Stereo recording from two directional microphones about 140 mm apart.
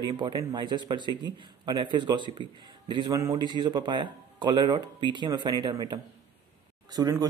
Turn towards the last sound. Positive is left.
turn(degrees=-25)  # may be behind; listen again after turning